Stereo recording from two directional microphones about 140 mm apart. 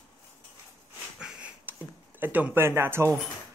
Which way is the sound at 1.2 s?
5° right (ahead or behind).